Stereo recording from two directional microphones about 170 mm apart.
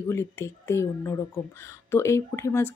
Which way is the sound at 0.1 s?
15° left (ahead or behind).